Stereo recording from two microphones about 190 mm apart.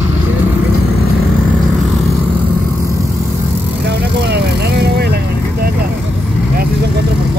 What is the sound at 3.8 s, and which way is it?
Vehicle, 65° right (ahead or behind).